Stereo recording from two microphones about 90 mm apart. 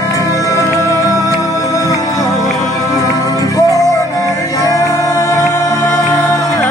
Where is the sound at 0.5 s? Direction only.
40° right (ahead or behind).